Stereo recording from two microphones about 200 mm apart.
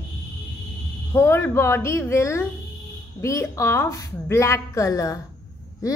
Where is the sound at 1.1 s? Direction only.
10° left (ahead or behind).